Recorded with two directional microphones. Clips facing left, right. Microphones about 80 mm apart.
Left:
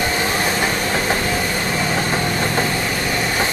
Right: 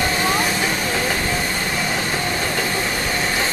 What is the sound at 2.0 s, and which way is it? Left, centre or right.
Vehicle, left.